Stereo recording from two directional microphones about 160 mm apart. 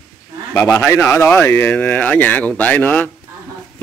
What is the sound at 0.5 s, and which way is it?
Speech, 15° left (ahead or behind).